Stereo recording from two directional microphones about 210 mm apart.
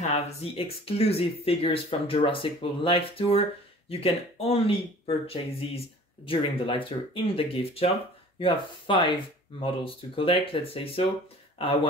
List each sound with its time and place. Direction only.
0.0 s speech: 30° left (ahead or behind)